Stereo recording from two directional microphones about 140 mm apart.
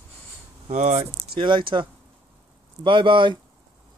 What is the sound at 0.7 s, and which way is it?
Speech, 55° right (ahead or behind).